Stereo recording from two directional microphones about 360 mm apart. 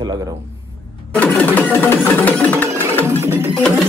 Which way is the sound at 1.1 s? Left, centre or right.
Centre.